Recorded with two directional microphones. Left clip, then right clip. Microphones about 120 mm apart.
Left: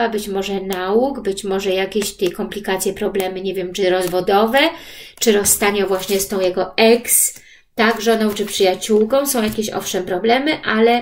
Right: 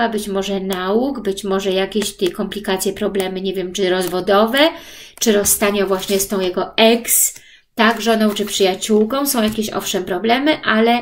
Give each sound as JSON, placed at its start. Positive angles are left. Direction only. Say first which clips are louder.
{"t": 0.3, "sound": "speech", "louder": "right 1 dB", "side_deg": -45}